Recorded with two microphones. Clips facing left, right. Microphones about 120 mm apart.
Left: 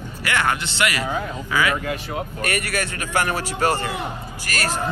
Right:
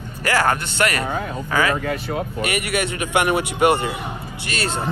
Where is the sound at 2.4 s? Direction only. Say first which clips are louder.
Right 2 dB; 20° right (ahead or behind).